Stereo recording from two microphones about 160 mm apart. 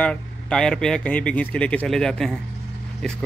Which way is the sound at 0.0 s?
5° left (ahead or behind).